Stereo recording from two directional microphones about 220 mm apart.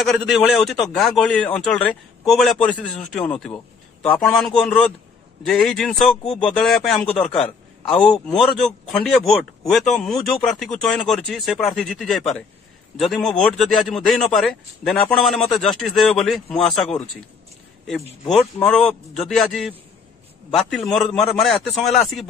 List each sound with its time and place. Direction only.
0.0 s a man's voice: centre (ahead or behind)
7.2 s a man's voice: 30° left (ahead or behind)
8.0 s a man's voice: 5° left (ahead or behind)
18.3 s a man's voice: 5° left (ahead or behind)